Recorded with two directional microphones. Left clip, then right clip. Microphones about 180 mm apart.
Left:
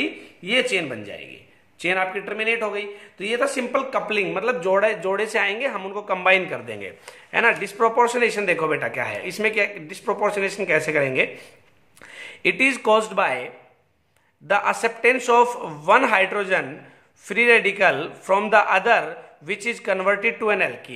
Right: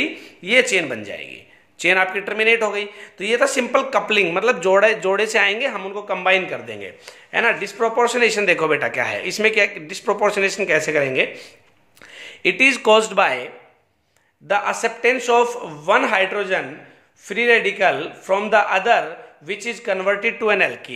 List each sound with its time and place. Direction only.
0.0 s speech: 20° right (ahead or behind)
14.5 s a man's voice: centre (ahead or behind)